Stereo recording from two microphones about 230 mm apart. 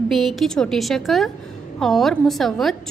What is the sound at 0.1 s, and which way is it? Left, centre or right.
A woman's voice, centre.